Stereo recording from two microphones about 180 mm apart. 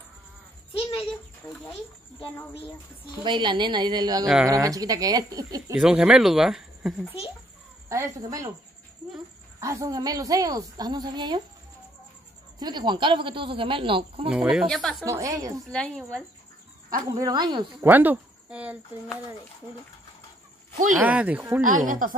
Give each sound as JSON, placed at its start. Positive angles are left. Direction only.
{"t": 2.2, "sound": "speech", "side_deg": 10}
{"t": 3.3, "sound": "a woman's voice", "side_deg": -25}
{"t": 5.8, "sound": "speech", "side_deg": -5}
{"t": 7.9, "sound": "a woman's voice", "side_deg": -20}
{"t": 9.6, "sound": "a woman's voice", "side_deg": -20}
{"t": 12.5, "sound": "a woman's voice", "side_deg": -25}
{"t": 14.3, "sound": "speech", "side_deg": -5}
{"t": 15.0, "sound": "a woman's voice", "side_deg": -20}
{"t": 15.7, "sound": "speech", "side_deg": 5}
{"t": 16.9, "sound": "a woman's voice", "side_deg": -20}
{"t": 17.8, "sound": "speech", "side_deg": -10}
{"t": 21.0, "sound": "speech", "side_deg": -5}
{"t": 21.5, "sound": "speech", "side_deg": -50}